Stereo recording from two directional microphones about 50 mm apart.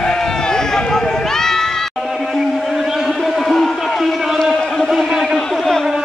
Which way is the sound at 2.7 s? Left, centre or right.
Centre.